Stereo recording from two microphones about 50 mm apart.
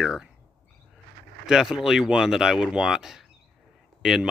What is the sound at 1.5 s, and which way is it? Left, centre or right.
Speech, centre.